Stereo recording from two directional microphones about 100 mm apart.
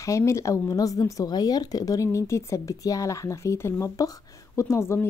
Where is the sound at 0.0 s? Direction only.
30° left (ahead or behind).